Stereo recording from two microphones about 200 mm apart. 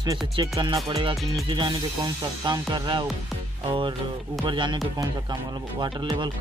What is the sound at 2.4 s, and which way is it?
Speech, 20° right (ahead or behind).